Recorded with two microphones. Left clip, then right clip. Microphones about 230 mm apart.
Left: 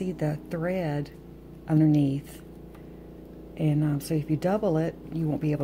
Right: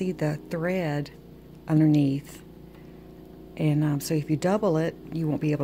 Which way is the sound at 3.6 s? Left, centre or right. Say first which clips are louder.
Right 1 dB; centre.